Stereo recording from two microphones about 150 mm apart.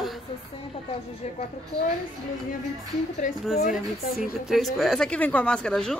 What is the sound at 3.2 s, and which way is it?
Speech, 60° left (ahead or behind).